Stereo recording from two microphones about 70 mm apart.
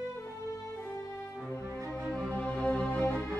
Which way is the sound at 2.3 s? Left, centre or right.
Centre.